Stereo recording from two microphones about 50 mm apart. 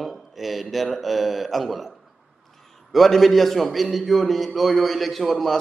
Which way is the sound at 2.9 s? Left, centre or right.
Centre.